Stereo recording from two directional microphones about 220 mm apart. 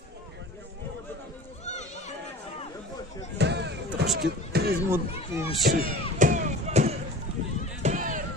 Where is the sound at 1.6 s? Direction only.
30° left (ahead or behind).